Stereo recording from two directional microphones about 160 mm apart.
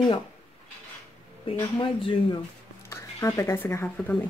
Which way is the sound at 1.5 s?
30° left (ahead or behind).